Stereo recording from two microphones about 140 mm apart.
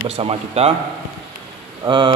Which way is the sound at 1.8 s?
35° right (ahead or behind).